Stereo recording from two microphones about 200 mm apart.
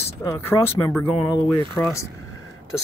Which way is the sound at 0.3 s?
15° left (ahead or behind).